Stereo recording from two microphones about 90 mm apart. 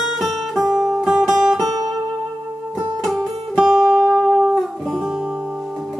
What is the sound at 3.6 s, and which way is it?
Music, 5° right (ahead or behind).